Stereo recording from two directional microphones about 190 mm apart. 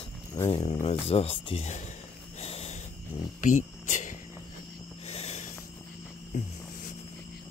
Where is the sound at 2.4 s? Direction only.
35° left (ahead or behind).